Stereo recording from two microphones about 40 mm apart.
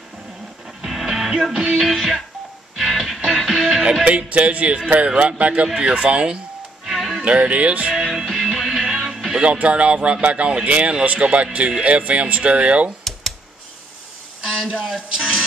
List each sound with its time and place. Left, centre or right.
0.8 s music: centre
4.3 s a man's voice: right
6.9 s music: centre
7.2 s a man's voice: right
7.9 s music: centre
9.4 s a man's voice: right
14.4 s a sound: centre
14.8 s speech: centre